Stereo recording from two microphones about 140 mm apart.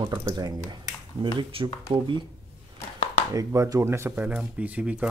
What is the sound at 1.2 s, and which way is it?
Speech, 40° right (ahead or behind).